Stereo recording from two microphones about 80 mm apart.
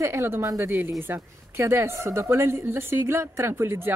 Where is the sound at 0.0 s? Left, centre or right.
Right.